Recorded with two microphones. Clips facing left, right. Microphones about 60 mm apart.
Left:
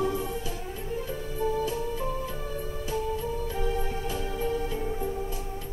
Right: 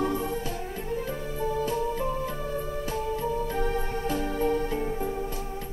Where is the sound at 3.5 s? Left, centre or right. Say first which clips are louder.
Right 2 dB; right.